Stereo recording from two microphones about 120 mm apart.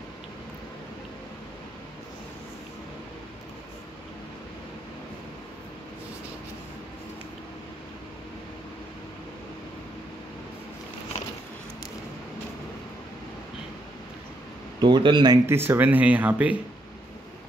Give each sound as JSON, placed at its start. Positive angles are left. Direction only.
{"t": 14.8, "sound": "speech", "side_deg": -40}
{"t": 15.4, "sound": "speech", "side_deg": -20}